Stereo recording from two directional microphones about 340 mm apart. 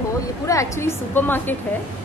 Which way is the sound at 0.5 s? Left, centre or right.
Centre.